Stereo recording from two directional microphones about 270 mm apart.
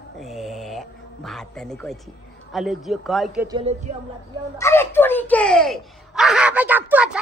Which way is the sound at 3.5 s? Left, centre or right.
Right.